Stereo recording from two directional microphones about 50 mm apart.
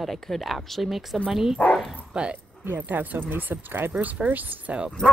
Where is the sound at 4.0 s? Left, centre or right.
Right.